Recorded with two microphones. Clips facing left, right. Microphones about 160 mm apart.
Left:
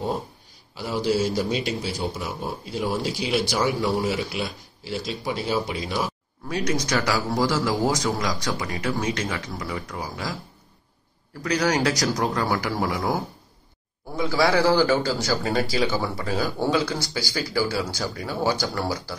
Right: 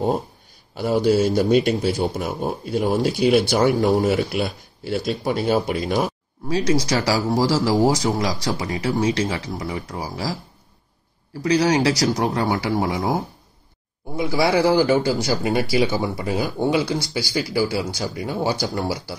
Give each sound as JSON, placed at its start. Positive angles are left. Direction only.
{"t": 0.7, "sound": "a man's voice", "side_deg": -55}
{"t": 6.5, "sound": "speech", "side_deg": -30}
{"t": 11.4, "sound": "speech", "side_deg": -25}